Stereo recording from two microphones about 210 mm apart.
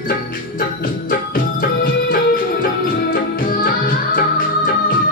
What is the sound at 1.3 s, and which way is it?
Music, 40° left (ahead or behind).